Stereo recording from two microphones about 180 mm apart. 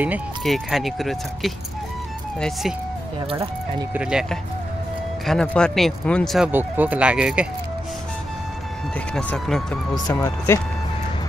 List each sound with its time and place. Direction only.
0.4 s speech: centre (ahead or behind)
3.9 s speech: 5° right (ahead or behind)
8.9 s speech: 5° left (ahead or behind)
9.9 s speech: 20° left (ahead or behind)